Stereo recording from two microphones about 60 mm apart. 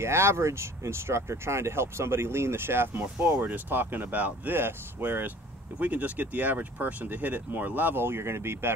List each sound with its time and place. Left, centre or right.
0.0 s speech: right
3.2 s speech: right
5.8 s speech: right